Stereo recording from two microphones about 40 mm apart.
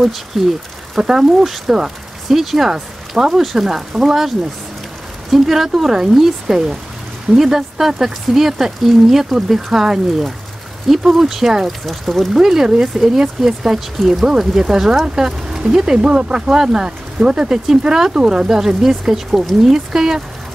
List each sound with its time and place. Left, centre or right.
0.3 s speech: centre
0.9 s speech: centre
5.3 s speech: centre
11.8 s speech: centre
12.4 s speech: centre
18.6 s speech: centre